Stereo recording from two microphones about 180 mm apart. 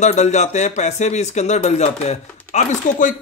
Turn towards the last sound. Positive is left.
turn(degrees=40)  # may be behind; listen again after turning